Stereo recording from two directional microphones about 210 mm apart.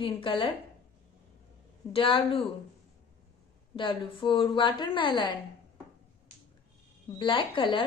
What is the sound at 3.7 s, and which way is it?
A woman's voice, 25° left (ahead or behind).